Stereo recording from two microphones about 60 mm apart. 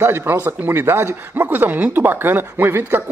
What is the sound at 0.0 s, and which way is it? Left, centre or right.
Speech, right.